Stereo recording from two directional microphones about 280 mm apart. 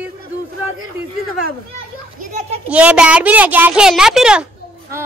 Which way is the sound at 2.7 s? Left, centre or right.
Centre.